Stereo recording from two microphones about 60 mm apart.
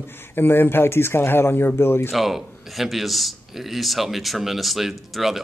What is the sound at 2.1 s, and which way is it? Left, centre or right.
A man's voice, centre.